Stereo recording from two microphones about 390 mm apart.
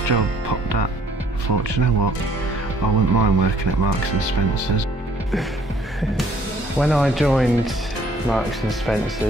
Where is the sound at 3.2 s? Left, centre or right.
Right.